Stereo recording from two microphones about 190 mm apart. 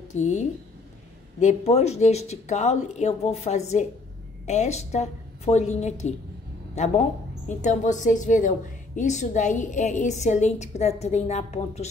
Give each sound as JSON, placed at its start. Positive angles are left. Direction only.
{"t": 0.1, "sound": "a woman's voice", "side_deg": 40}